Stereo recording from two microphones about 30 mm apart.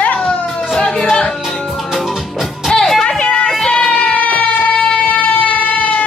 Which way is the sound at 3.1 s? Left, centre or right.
Left.